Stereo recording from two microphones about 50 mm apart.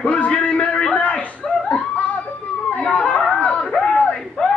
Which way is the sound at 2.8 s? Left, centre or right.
Left.